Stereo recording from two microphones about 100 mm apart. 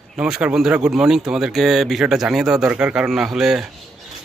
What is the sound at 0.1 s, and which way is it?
Speech, 10° right (ahead or behind).